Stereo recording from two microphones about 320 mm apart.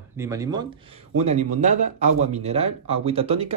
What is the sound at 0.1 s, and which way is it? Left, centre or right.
Speech, centre.